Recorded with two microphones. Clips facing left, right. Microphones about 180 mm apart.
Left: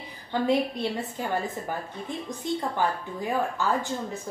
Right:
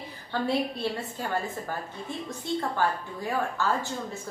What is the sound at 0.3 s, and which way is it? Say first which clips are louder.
Speech: left 3 dB; 15° left (ahead or behind).